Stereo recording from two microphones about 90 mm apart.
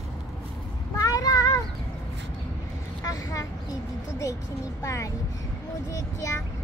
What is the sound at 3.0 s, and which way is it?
Vehicle, 40° left (ahead or behind).